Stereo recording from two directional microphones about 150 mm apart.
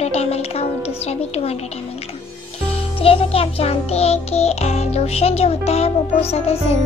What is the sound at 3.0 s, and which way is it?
Music, 40° left (ahead or behind).